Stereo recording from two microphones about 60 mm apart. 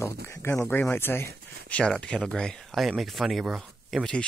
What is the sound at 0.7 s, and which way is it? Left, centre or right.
Speech, left.